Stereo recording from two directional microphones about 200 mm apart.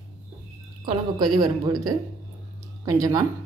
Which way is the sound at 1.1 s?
20° right (ahead or behind).